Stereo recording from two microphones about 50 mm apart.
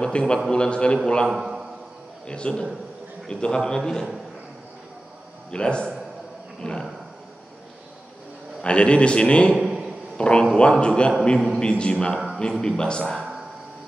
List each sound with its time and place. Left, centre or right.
0.2 s a man's voice: left
1.3 s a man's voice: centre
2.2 s a man's voice: centre
5.5 s a man's voice: centre
8.6 s a man's voice: left
9.6 s a sound: centre
10.1 s a man's voice: centre
11.3 s a man's voice: centre
11.6 s a man's voice: left